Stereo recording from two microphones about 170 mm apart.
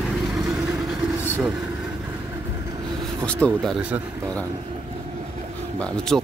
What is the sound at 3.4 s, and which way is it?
Speech, centre (ahead or behind).